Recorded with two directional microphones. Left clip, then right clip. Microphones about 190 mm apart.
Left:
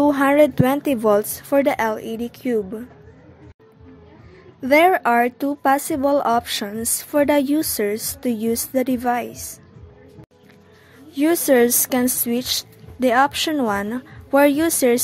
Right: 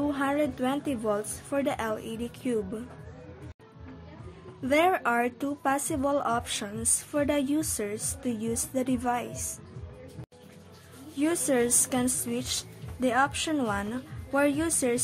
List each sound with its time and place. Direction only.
0.0 s a woman's voice: 45° left (ahead or behind); by 2.8 s 25° left (ahead or behind)
4.6 s a woman's voice: 30° left (ahead or behind)
11.1 s a woman's voice: 35° left (ahead or behind)